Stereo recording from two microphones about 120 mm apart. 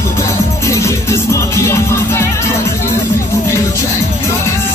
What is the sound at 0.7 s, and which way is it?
Music, 25° left (ahead or behind).